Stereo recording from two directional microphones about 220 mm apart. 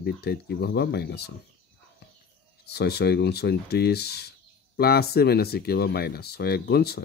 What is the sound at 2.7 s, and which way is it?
Speech, 50° left (ahead or behind).